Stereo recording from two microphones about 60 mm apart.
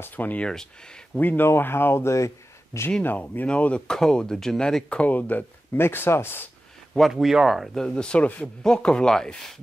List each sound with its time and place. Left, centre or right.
0.1 s speech: left
0.5 s speech: centre
1.1 s speech: left
3.2 s speech: left
6.9 s speech: centre
7.8 s speech: centre